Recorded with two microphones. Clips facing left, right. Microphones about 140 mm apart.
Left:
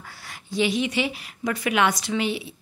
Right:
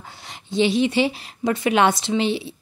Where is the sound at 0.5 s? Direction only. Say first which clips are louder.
Right 5 dB; 30° right (ahead or behind).